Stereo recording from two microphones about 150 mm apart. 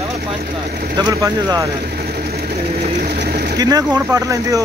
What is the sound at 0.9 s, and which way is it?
Speech, 25° right (ahead or behind).